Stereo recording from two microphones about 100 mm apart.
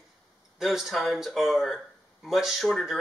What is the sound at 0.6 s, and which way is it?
Speech, centre (ahead or behind).